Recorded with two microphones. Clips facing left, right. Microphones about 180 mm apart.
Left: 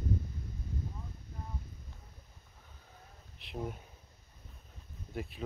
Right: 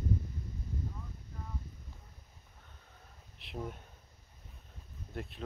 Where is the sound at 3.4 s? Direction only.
Centre (ahead or behind).